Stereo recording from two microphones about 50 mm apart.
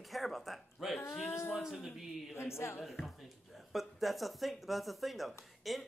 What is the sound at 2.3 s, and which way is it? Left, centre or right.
Speech, left.